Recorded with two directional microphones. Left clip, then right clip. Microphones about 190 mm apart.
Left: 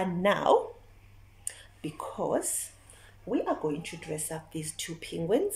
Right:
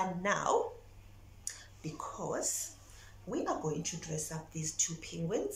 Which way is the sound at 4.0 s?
20° left (ahead or behind).